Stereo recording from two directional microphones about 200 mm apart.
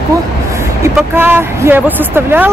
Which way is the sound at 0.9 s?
10° right (ahead or behind).